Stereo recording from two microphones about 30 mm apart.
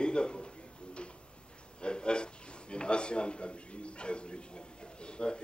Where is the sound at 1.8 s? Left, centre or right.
Left.